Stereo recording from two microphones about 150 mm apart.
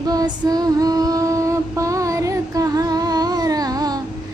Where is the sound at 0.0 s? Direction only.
25° right (ahead or behind).